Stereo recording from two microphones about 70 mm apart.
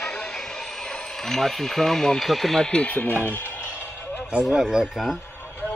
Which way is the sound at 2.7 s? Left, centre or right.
Centre.